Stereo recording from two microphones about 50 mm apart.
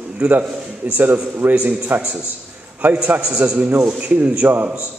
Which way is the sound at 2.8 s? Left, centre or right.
Right.